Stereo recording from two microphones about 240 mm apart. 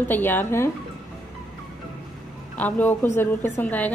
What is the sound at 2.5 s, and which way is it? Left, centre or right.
A woman's voice, centre.